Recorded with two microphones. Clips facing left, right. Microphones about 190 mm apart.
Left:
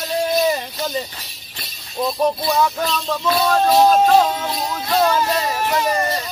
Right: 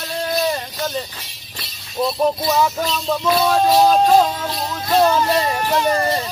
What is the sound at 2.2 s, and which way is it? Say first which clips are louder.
Speech: even; 5° right (ahead or behind).